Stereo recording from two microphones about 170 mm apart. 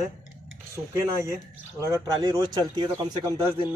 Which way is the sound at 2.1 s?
20° right (ahead or behind).